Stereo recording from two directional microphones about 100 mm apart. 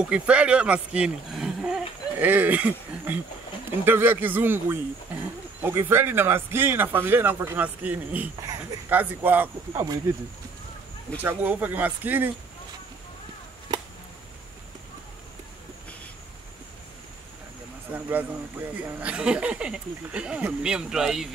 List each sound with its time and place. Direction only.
0.0 s speech: 10° right (ahead or behind)
2.1 s speech: 15° right (ahead or behind)
9.7 s speech: 40° right (ahead or behind)
11.2 s speech: 15° right (ahead or behind)
17.9 s speech: 15° right (ahead or behind)